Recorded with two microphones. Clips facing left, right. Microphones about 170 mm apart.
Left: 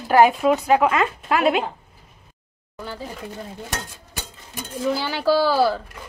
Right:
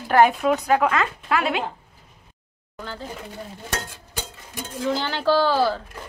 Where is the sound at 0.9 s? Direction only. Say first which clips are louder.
Left 2 dB; 25° left (ahead or behind).